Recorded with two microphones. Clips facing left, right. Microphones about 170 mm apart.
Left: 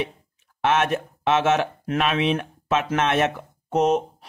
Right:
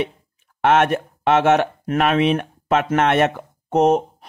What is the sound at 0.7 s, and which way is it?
Speech, 60° right (ahead or behind).